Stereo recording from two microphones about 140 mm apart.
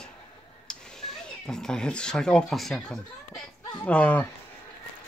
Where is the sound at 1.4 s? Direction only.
5° left (ahead or behind).